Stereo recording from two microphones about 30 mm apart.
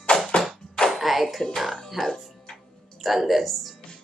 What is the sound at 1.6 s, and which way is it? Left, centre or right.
Speech, centre.